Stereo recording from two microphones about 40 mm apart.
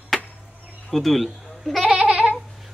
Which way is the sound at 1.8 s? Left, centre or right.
Right.